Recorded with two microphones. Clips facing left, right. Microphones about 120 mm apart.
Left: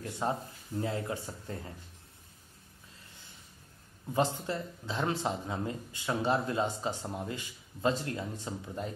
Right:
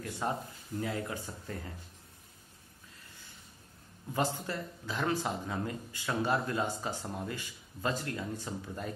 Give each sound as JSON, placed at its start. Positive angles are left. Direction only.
{"t": 0.2, "sound": "speech", "side_deg": 20}
{"t": 4.1, "sound": "speech", "side_deg": 20}